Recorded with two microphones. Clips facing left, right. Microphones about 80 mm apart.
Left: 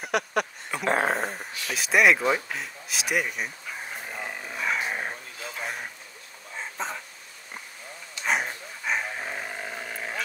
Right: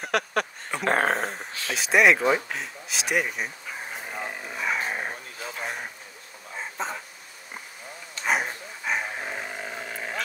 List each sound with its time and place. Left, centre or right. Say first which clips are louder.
0.0 s speech: even; right
1.1 s speech: right 1 dB; centre
2.5 s dog: right 1 dB; centre
5.6 s a sound: right 1 dB; centre
6.5 s dog: right 1 dB; centre
8.3 s dog: right 1 dB; centre